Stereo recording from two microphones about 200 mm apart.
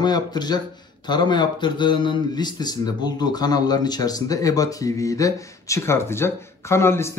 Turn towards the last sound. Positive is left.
turn(degrees=10)  # may be behind; listen again after turning